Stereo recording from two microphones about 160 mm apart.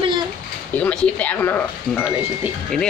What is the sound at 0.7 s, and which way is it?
Speech, 10° left (ahead or behind).